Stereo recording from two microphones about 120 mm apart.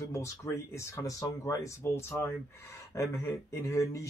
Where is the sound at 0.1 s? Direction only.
25° left (ahead or behind).